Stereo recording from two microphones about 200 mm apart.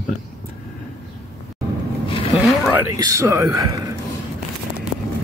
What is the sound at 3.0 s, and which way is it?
Speech, 15° right (ahead or behind).